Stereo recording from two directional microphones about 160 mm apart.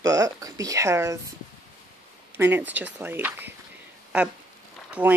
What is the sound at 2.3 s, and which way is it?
Speech, 15° right (ahead or behind).